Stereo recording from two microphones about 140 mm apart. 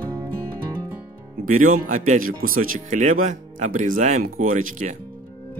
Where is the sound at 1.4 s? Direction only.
75° right (ahead or behind).